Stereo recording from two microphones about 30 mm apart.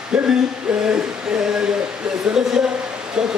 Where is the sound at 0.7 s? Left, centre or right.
Right.